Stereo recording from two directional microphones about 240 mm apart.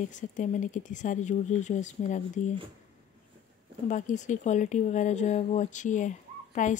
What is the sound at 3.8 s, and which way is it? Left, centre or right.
A child's voice, left.